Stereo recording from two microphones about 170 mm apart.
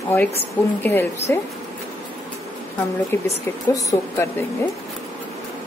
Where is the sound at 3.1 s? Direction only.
15° left (ahead or behind).